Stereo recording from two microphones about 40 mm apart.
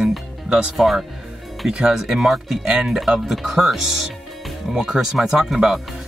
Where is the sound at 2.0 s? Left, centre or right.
Centre.